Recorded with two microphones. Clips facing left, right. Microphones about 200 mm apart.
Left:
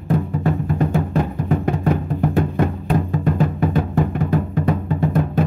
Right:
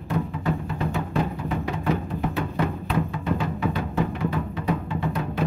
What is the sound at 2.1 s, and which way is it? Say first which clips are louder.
Music: left 7 dB; 50° left (ahead or behind).